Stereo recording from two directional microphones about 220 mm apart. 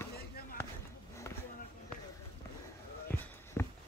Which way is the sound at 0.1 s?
45° left (ahead or behind).